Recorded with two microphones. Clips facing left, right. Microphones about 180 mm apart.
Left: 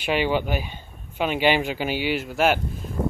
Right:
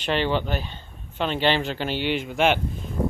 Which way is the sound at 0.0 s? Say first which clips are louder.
Left 1 dB; 10° left (ahead or behind).